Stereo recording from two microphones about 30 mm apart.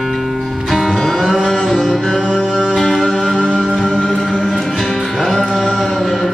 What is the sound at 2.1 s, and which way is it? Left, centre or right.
Music, right.